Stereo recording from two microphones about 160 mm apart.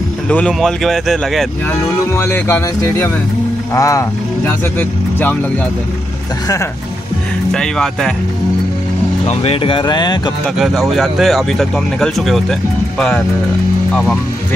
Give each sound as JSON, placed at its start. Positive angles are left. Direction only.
{"t": 0.3, "sound": "speech", "side_deg": 5}
{"t": 2.1, "sound": "speech", "side_deg": 15}
{"t": 7.5, "sound": "speech", "side_deg": 5}
{"t": 9.2, "sound": "speech", "side_deg": 35}
{"t": 10.4, "sound": "speech", "side_deg": 0}